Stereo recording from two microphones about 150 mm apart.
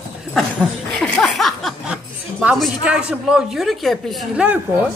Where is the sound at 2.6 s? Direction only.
5° right (ahead or behind).